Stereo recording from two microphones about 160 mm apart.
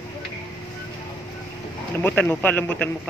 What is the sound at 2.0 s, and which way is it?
Speech, 10° left (ahead or behind).